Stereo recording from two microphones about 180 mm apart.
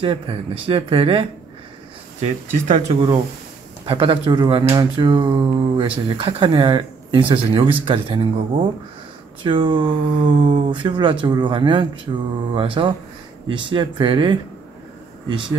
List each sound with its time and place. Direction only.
0.0 s speech: 30° right (ahead or behind)
3.8 s speech: 30° right (ahead or behind)